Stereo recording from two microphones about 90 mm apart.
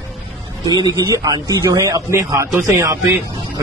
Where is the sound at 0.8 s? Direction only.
50° right (ahead or behind).